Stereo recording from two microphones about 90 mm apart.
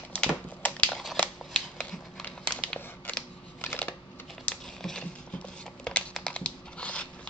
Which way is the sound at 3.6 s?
20° left (ahead or behind).